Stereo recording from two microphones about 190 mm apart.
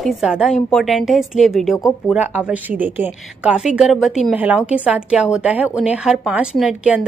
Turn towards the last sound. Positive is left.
turn(degrees=-5)  # may be behind; listen again after turning